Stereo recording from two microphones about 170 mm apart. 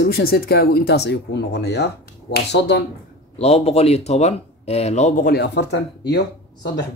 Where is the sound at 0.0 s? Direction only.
65° left (ahead or behind); by 2.8 s 85° left.